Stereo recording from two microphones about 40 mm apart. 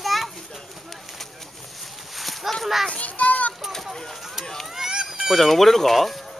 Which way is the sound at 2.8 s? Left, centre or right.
Left.